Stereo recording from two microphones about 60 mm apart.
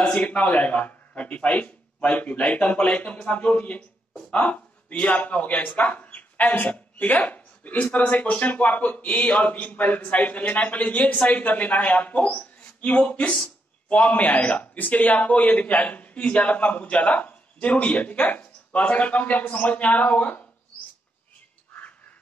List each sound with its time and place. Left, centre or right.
0.0 s speech: left